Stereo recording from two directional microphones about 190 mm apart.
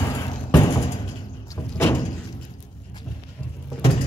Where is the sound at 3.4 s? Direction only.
5° left (ahead or behind).